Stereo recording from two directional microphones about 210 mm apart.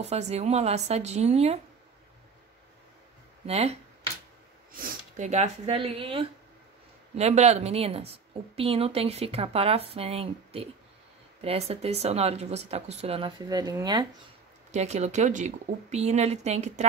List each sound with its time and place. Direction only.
0.0 s speech: 30° right (ahead or behind)
3.4 s a woman's voice: 30° right (ahead or behind)
4.7 s a woman's voice: 40° right (ahead or behind); by 14.0 s 20° right (ahead or behind)
14.7 s speech: 30° right (ahead or behind)